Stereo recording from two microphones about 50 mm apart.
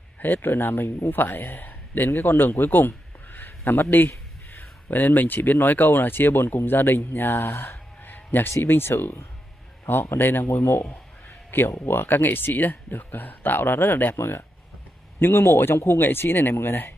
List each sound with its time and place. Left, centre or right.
0.2 s a man's voice: left
11.8 s speech: left